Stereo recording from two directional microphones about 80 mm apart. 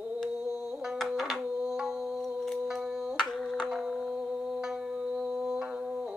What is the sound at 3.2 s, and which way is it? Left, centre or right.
Music, centre.